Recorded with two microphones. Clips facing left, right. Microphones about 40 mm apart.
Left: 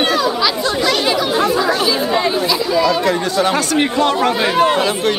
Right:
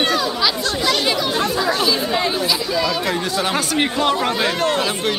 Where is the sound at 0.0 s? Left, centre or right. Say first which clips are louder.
Left 3 dB; centre.